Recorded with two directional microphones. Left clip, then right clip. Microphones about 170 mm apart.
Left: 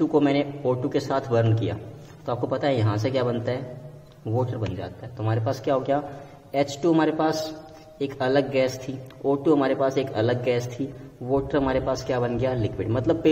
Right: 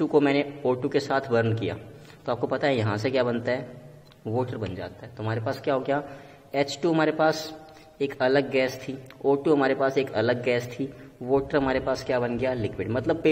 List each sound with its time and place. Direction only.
0.0 s a man's voice: 20° right (ahead or behind)